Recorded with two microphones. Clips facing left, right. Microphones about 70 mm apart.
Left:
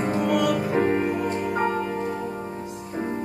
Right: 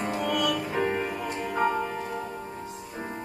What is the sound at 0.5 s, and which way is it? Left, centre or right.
Music, left.